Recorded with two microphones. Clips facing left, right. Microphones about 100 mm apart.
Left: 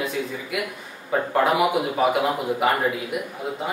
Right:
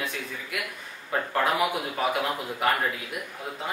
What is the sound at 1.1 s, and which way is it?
A man's voice, 10° left (ahead or behind).